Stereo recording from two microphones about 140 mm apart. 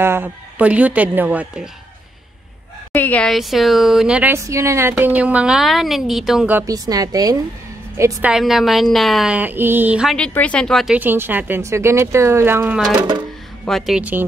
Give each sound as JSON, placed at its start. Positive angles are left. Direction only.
{"t": 0.0, "sound": "speech", "side_deg": -15}
{"t": 2.9, "sound": "speech", "side_deg": 10}
{"t": 6.5, "sound": "a woman's voice", "side_deg": -25}
{"t": 8.3, "sound": "speech", "side_deg": 0}
{"t": 10.1, "sound": "speech", "side_deg": 10}
{"t": 11.0, "sound": "speech", "side_deg": -15}